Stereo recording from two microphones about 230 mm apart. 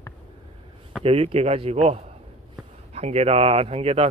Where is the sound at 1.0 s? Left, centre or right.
Right.